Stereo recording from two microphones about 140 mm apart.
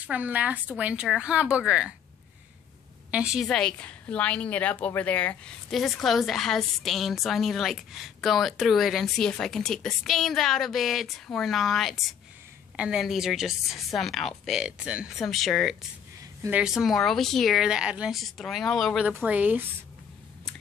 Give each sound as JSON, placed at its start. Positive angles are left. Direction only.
{"t": 0.0, "sound": "a woman's voice", "side_deg": -10}
{"t": 3.1, "sound": "a woman's voice", "side_deg": -5}
{"t": 3.4, "sound": "a woman's voice", "side_deg": 5}
{"t": 19.0, "sound": "a woman's voice", "side_deg": -10}